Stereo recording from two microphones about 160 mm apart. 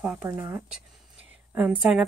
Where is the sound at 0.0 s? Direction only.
10° right (ahead or behind).